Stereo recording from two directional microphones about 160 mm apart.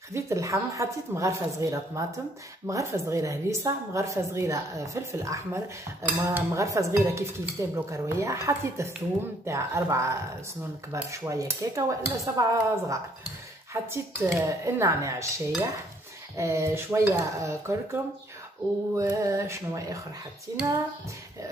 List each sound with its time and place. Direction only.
0.1 s a woman's voice: 20° right (ahead or behind)
6.1 s dishes: 20° right (ahead or behind)
10.9 s a woman's voice: 20° right (ahead or behind)
13.8 s dishes: 15° right (ahead or behind)
18.9 s a woman's voice: 20° right (ahead or behind)